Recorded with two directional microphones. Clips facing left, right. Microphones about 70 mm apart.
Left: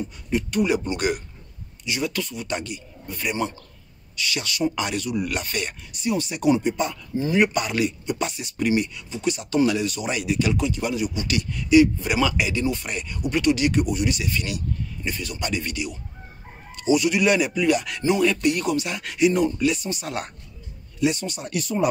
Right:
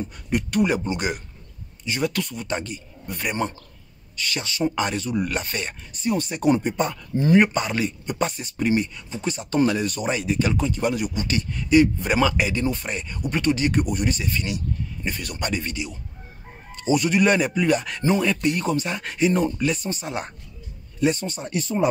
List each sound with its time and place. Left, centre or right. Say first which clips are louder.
0.3 s speech: right 1 dB; right
0.8 s speech: left 2 dB; right
1.9 s speech: right 2 dB; right
2.4 s speech: right 1 dB; right
15.0 s speech: even; right
20.1 s speech: even; right
21.0 s speech: right 1 dB; right